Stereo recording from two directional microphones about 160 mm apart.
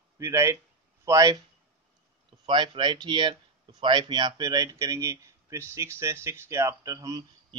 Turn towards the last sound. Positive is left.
turn(degrees=-20)  # may be behind; listen again after turning